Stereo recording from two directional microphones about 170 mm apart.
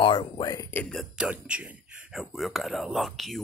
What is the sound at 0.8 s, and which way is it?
Speech, centre (ahead or behind).